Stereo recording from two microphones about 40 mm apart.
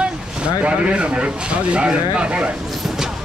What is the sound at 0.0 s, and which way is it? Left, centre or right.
Speech, right.